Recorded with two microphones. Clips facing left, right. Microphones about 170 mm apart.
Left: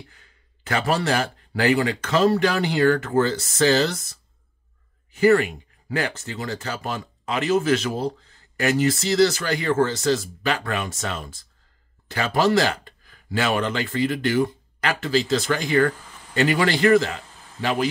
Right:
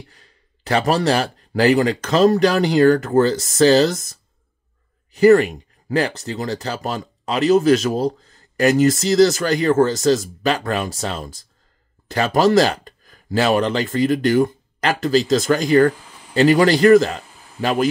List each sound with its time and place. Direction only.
0.1 s a man's voice: 35° right (ahead or behind)